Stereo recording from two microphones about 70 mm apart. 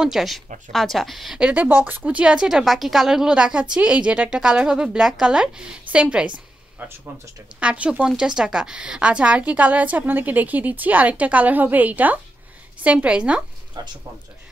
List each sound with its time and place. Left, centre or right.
0.0 s speech: centre
1.4 s a woman's voice: centre
13.8 s speech: right